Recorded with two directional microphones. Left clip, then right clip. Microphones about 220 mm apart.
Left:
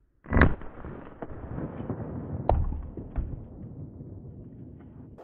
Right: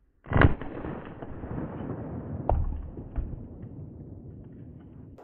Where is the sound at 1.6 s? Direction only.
Centre (ahead or behind).